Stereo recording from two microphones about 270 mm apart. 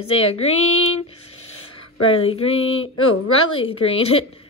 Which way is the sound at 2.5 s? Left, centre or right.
Left.